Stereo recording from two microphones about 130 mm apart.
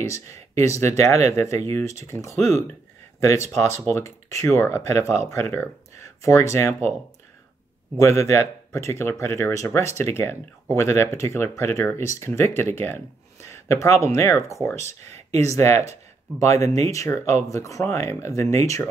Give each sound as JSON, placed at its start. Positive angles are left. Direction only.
{"t": 0.1, "sound": "speech", "side_deg": 20}
{"t": 8.0, "sound": "speech", "side_deg": 20}